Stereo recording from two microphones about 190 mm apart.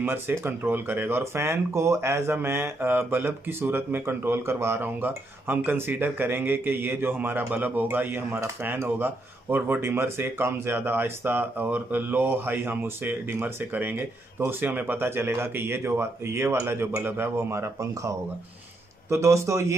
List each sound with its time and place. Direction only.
0.0 s speech: 10° right (ahead or behind)